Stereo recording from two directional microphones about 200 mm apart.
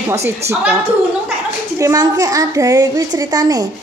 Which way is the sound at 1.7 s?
15° right (ahead or behind).